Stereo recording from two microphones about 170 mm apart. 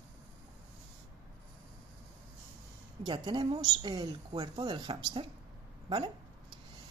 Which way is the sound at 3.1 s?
25° right (ahead or behind).